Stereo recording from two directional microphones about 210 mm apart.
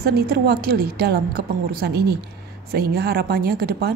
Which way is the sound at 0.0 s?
45° right (ahead or behind).